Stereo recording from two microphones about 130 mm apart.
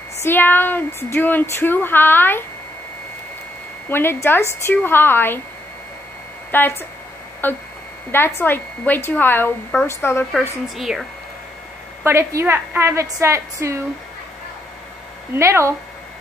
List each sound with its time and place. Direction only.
0.2 s speech: 15° left (ahead or behind)
3.9 s speech: 15° left (ahead or behind)
6.5 s speech: 15° left (ahead or behind)
10.8 s speech: centre (ahead or behind)
12.0 s a woman's voice: 20° right (ahead or behind)
15.3 s a woman's voice: 20° right (ahead or behind)